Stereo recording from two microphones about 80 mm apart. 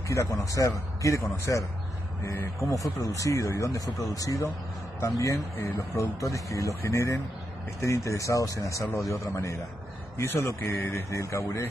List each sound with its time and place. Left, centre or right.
0.1 s speech: left
2.2 s speech: left